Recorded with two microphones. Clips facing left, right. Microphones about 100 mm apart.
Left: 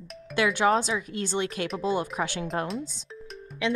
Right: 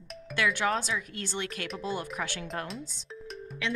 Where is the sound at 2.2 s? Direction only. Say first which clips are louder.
Left 6 dB; 20° left (ahead or behind).